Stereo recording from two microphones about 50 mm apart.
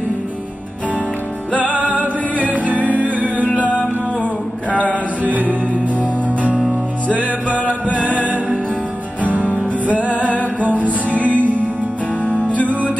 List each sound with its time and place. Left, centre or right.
1.6 s music: right
12.3 s music: left